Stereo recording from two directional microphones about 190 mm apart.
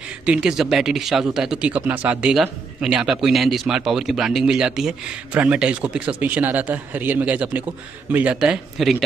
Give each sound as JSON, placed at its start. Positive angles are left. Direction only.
{"t": 0.2, "sound": "speech", "side_deg": -5}